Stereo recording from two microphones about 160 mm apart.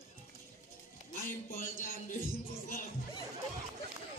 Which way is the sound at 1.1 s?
60° left (ahead or behind).